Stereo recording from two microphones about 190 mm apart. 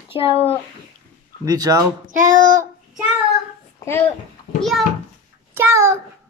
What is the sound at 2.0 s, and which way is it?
Child singing, 45° right (ahead or behind).